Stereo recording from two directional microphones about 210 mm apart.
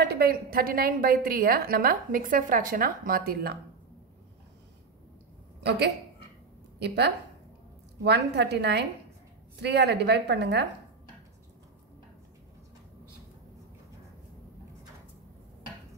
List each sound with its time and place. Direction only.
0.1 s a woman's voice: 45° right (ahead or behind)
5.6 s a woman's voice: 55° right (ahead or behind)